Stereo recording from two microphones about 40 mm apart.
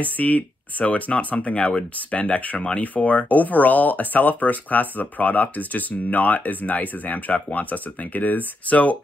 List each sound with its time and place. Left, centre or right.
0.0 s speech: left
2.3 s speech: left